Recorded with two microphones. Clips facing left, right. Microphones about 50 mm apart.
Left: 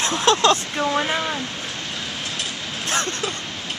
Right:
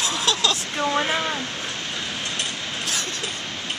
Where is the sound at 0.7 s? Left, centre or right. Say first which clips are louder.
Left 1 dB; centre.